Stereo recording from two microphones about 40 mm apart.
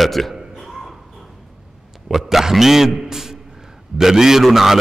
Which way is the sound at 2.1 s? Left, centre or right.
Centre.